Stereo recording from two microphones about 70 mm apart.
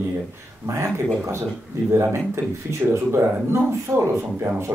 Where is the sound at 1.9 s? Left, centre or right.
Right.